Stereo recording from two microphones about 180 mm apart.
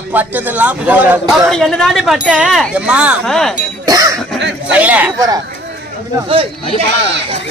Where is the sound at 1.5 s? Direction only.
Centre (ahead or behind).